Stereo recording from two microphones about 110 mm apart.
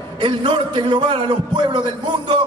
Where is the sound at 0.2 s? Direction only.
45° right (ahead or behind).